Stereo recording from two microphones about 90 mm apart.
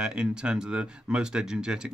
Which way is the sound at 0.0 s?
10° right (ahead or behind).